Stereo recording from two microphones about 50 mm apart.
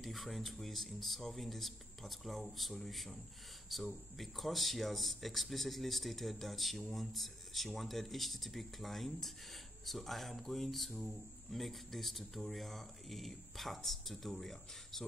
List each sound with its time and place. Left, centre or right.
0.0 s speech: centre